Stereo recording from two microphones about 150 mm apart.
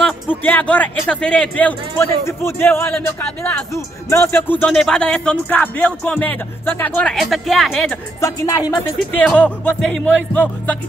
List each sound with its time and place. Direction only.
0.0 s a man's voice: 10° left (ahead or behind)
7.2 s speech: centre (ahead or behind)
8.2 s a man's voice: 20° left (ahead or behind)